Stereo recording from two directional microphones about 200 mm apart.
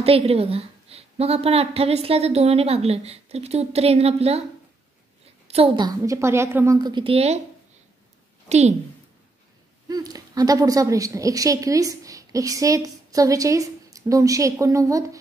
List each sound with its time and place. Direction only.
0.0 s a woman's voice: 30° right (ahead or behind)
5.5 s a woman's voice: 30° right (ahead or behind)
5.9 s a woman's voice: 15° right (ahead or behind); by 7.4 s 30° right (ahead or behind)
8.5 s a woman's voice: 35° right (ahead or behind)
9.8 s a woman's voice: 20° right (ahead or behind)